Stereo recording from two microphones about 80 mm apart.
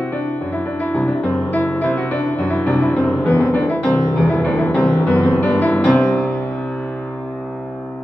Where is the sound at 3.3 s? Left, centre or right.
Left.